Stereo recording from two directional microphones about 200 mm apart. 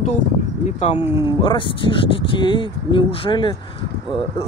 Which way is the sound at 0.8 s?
25° left (ahead or behind).